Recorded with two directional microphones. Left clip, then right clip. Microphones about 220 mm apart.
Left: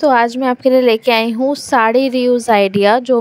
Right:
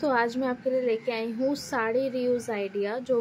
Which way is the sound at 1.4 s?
35° left (ahead or behind).